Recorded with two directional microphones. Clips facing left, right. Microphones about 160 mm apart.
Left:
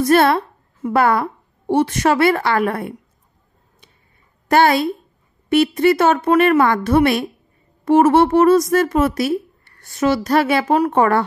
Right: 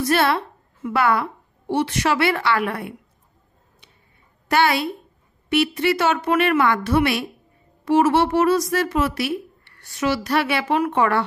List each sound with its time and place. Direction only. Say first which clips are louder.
0.0 s a woman's voice: left 6 dB; 45° left (ahead or behind)
4.5 s a woman's voice: left 5 dB; 45° left (ahead or behind)